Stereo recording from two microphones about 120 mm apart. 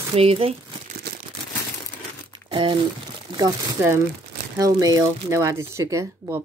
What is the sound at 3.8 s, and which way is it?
Speech, 20° right (ahead or behind).